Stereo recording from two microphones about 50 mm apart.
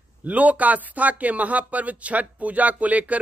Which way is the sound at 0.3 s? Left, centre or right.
Right.